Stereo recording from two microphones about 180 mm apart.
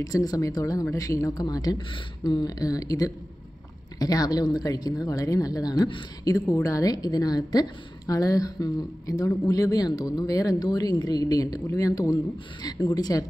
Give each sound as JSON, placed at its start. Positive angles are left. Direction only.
{"t": 0.0, "sound": "speech", "side_deg": 20}